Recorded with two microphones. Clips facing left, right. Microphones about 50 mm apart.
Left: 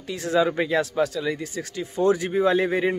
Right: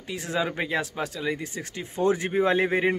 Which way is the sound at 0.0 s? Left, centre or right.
Centre.